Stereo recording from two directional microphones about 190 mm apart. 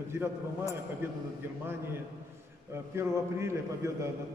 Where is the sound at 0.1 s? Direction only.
15° right (ahead or behind).